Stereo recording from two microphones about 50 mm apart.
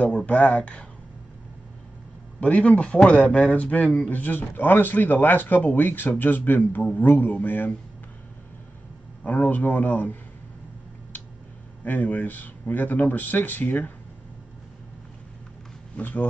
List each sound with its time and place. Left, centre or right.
0.3 s speech: left
2.4 s speech: left
4.1 s speech: left
9.2 s speech: left
11.8 s speech: left
16.0 s speech: left